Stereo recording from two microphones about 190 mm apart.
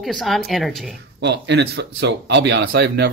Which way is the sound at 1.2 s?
65° right (ahead or behind).